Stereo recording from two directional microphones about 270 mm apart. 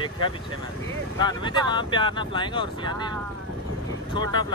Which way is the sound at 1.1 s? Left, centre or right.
Centre.